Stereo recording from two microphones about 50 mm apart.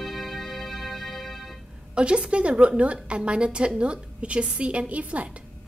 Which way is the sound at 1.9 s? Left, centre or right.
Right.